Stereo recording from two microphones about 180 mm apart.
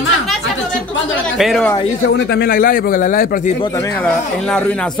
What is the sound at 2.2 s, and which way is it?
Speech, 60° left (ahead or behind).